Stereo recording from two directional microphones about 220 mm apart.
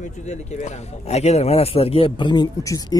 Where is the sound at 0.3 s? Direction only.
30° left (ahead or behind).